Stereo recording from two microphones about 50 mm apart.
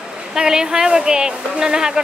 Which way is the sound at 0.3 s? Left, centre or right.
Centre.